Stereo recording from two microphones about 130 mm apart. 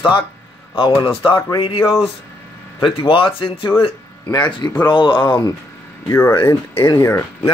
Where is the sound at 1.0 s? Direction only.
45° left (ahead or behind).